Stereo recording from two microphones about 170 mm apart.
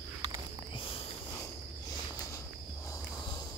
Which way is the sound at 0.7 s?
30° left (ahead or behind).